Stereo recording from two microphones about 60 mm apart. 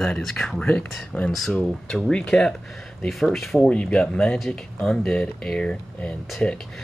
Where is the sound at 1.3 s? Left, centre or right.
Centre.